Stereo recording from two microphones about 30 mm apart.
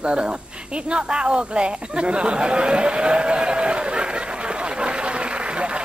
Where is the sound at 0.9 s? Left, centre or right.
Right.